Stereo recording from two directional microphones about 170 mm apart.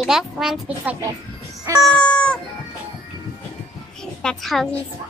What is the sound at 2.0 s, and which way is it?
Cat, 5° left (ahead or behind).